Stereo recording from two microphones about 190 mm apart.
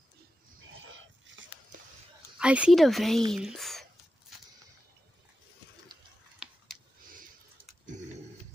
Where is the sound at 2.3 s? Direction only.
5° right (ahead or behind).